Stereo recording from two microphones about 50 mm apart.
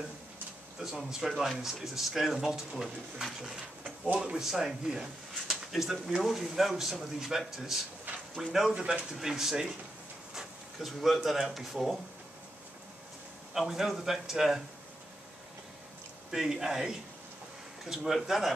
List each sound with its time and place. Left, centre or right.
0.7 s a man's voice: centre
3.8 s a sound: right
4.2 s speech: centre
8.7 s speech: centre
9.1 s speech: centre
10.3 s a sound: centre
11.2 s a man's voice: centre
13.5 s a man's voice: centre
16.3 s speech: centre